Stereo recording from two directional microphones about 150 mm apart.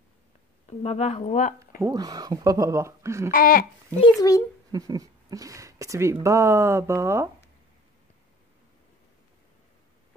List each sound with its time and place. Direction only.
0.7 s speech: 45° left (ahead or behind)
1.8 s speech: 25° right (ahead or behind)
3.3 s babbling: 70° left (ahead or behind)
4.0 s a child's voice: 25° left (ahead or behind)
4.7 s speech: 25° right (ahead or behind)